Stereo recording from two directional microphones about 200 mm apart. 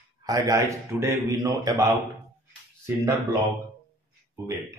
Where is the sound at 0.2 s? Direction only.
15° right (ahead or behind).